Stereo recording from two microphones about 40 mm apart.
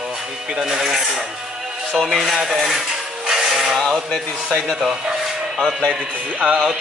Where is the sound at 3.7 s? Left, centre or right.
Centre.